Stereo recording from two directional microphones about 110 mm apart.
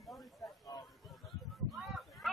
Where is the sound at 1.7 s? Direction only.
Centre (ahead or behind).